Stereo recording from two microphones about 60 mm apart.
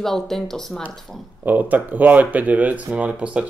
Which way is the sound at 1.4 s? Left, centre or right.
Right.